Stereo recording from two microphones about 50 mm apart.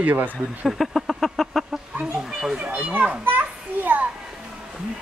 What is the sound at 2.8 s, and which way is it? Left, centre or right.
Children playing, right.